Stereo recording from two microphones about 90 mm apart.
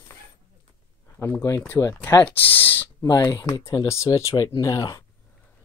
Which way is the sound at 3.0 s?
40° left (ahead or behind).